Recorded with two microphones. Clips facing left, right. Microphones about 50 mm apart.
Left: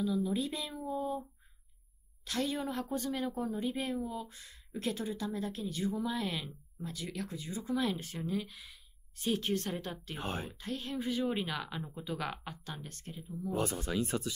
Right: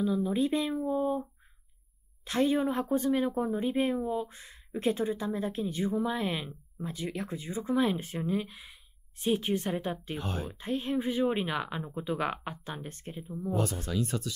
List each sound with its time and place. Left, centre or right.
0.0 s speech: right
2.2 s a woman's voice: right
10.1 s speech: left
10.5 s speech: right
13.5 s speech: left